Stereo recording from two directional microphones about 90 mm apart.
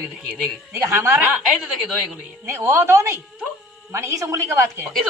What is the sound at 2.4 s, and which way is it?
A woman's voice, 35° right (ahead or behind).